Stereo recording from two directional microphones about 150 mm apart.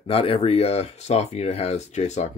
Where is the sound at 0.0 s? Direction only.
40° left (ahead or behind).